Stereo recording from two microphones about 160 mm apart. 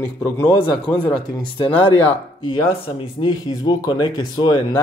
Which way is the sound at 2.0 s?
35° left (ahead or behind).